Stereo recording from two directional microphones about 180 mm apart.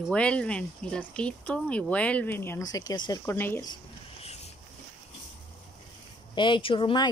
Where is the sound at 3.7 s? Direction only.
35° left (ahead or behind).